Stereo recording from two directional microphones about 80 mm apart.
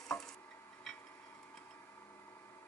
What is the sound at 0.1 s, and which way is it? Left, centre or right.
Stir, centre.